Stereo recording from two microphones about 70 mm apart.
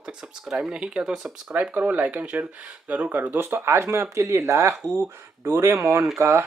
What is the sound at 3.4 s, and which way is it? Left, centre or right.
Speech, right.